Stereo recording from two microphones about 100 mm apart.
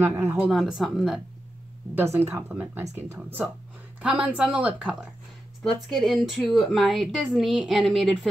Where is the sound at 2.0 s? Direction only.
20° right (ahead or behind).